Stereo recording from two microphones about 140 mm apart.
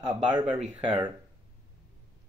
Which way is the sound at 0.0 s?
35° right (ahead or behind).